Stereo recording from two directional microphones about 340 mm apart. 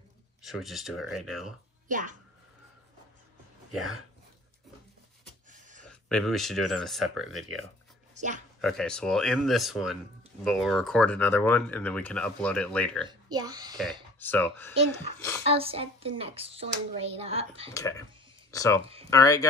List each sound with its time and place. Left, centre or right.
0.4 s speech: centre
1.9 s speech: right
5.5 s a sound: right
5.9 s speech: centre
8.1 s speech: right
8.5 s speech: centre
13.3 s a child's voice: centre
14.2 s speech: centre
15.4 s a child's voice: centre
17.7 s speech: centre